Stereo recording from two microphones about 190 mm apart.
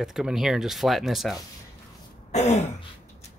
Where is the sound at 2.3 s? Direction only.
35° left (ahead or behind).